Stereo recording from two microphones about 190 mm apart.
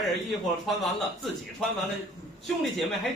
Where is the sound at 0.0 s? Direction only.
Centre (ahead or behind).